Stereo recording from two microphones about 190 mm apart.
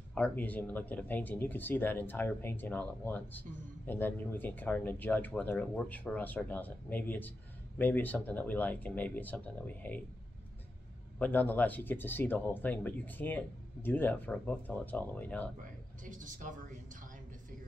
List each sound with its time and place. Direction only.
0.1 s speech: 10° left (ahead or behind)
11.1 s speech: 10° left (ahead or behind)
15.6 s a sound: 45° right (ahead or behind)